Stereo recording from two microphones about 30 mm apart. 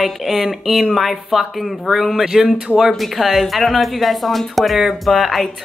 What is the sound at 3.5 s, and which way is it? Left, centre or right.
Speech, centre.